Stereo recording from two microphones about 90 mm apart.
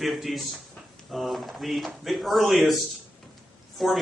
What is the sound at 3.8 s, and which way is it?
Speech, centre (ahead or behind).